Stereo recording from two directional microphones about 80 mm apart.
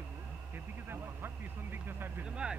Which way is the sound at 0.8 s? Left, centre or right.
Right.